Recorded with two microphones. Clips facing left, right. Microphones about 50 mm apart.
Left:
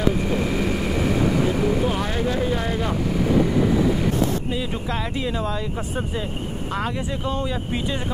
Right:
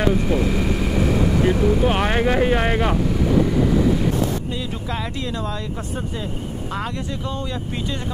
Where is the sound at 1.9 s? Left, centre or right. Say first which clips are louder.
Right 5 dB; right.